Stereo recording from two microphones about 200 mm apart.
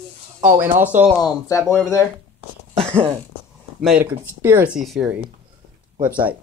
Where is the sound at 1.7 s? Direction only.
15° left (ahead or behind).